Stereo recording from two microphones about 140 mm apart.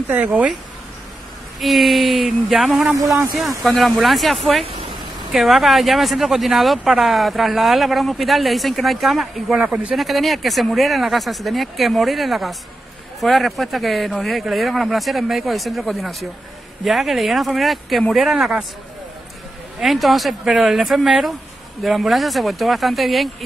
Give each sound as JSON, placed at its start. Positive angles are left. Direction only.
{"t": 0.1, "sound": "speech", "side_deg": -10}
{"t": 1.6, "sound": "speech", "side_deg": 0}
{"t": 4.6, "sound": "a sound", "side_deg": -45}
{"t": 5.3, "sound": "speech", "side_deg": 0}
{"t": 19.8, "sound": "speech", "side_deg": 0}